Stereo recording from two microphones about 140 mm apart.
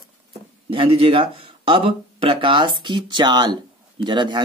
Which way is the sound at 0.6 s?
45° right (ahead or behind).